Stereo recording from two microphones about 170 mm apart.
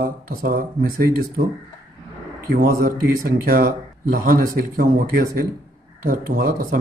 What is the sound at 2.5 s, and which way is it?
Speech, 60° right (ahead or behind).